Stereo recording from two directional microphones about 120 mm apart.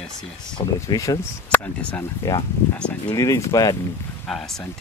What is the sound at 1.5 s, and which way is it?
Speech, 10° left (ahead or behind).